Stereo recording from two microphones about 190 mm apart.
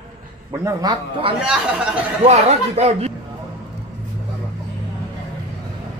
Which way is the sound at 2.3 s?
35° right (ahead or behind).